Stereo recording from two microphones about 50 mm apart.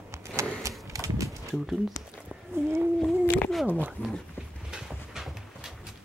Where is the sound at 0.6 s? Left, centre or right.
Right.